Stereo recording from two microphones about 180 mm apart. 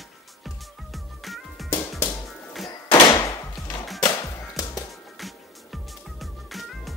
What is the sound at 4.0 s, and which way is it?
Music, 20° left (ahead or behind).